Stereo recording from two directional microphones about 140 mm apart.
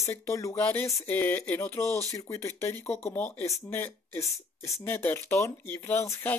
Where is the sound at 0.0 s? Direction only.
20° left (ahead or behind).